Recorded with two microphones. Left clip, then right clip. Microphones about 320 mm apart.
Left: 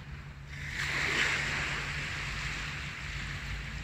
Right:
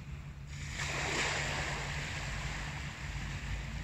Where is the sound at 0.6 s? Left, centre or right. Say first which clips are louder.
Left 5 dB; right.